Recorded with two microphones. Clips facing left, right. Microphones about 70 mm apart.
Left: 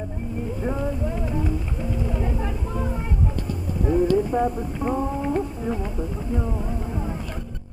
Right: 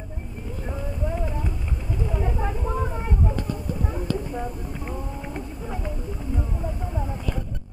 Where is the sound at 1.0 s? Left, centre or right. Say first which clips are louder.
Left 3 dB; centre.